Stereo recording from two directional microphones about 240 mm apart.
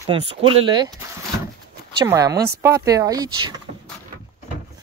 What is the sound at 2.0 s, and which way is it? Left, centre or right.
Speech, centre.